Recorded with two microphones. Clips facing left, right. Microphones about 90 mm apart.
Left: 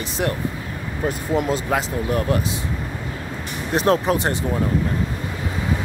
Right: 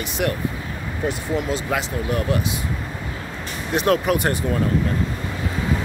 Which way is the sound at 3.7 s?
35° left (ahead or behind).